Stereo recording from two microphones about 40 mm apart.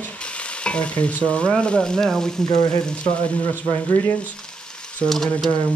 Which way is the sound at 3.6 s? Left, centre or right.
Left.